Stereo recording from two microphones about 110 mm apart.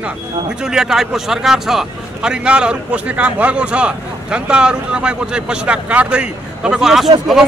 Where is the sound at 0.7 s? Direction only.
5° right (ahead or behind).